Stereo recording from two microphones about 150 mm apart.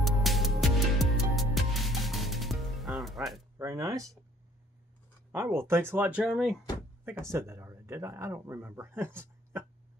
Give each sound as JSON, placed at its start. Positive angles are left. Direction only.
{"t": 0.0, "sound": "music", "side_deg": 0}
{"t": 3.5, "sound": "speech", "side_deg": -20}
{"t": 5.3, "sound": "speech", "side_deg": -15}
{"t": 7.1, "sound": "speech", "side_deg": -15}